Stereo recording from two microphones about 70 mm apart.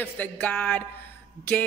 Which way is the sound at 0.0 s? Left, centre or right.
Left.